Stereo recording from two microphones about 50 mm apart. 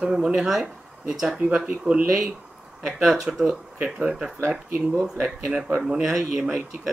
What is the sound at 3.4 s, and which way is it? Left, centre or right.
Speech, right.